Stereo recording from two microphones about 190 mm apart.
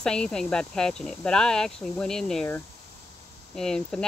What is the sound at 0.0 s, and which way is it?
Speech, 5° left (ahead or behind).